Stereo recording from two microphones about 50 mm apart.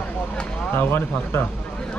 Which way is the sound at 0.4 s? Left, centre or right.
Centre.